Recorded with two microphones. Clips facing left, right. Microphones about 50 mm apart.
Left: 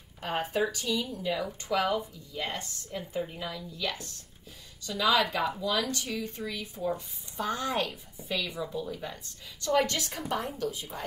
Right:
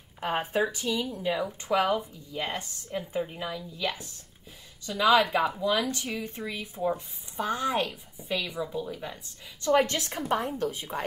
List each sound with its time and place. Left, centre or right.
0.2 s a woman's voice: right
6.9 s a woman's voice: centre
9.6 s speech: right
10.6 s speech: right